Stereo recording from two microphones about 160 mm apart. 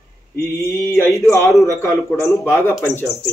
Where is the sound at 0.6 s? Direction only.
15° left (ahead or behind).